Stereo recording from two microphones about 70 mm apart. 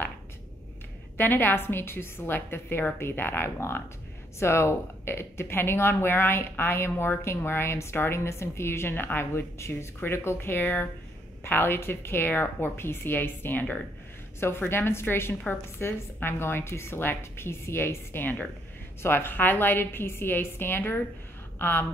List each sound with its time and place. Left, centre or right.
1.1 s a woman's voice: left